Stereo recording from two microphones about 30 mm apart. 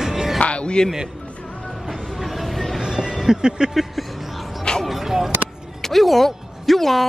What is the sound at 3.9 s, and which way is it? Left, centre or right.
Music, centre.